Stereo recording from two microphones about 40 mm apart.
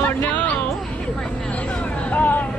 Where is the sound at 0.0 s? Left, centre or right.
Left.